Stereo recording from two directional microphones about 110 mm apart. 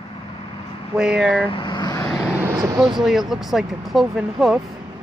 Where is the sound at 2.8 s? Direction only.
5° right (ahead or behind).